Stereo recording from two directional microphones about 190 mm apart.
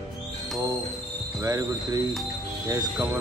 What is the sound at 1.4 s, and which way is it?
Speech, 20° right (ahead or behind).